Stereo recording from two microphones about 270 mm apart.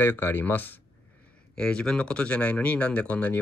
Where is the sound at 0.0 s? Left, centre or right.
Centre.